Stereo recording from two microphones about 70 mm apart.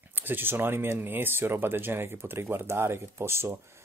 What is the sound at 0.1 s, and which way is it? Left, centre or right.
Speech, right.